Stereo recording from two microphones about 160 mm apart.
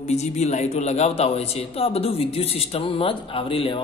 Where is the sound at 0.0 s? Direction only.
45° left (ahead or behind).